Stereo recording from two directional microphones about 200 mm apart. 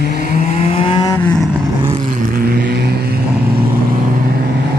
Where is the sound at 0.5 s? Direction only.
30° left (ahead or behind).